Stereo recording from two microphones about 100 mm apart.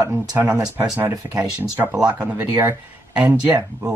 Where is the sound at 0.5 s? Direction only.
35° right (ahead or behind).